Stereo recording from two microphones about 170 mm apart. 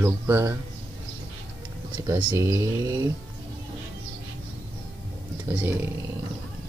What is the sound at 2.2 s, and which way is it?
Speech, 20° right (ahead or behind).